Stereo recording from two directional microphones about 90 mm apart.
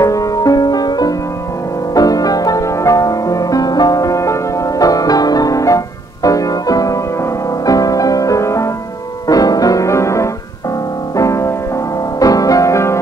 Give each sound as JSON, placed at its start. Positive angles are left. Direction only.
{"t": 0.0, "sound": "music", "side_deg": 40}